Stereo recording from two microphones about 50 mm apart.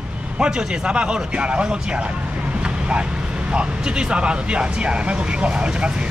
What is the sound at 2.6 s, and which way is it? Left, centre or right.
Vehicle, right.